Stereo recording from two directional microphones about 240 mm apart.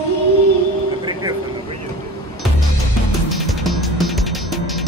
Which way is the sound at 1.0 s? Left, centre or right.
Centre.